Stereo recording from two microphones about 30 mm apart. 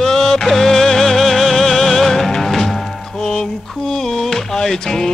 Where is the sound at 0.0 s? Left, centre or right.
Centre.